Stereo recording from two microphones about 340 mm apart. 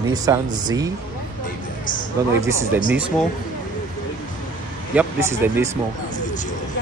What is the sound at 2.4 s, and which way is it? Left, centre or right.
Speech, centre.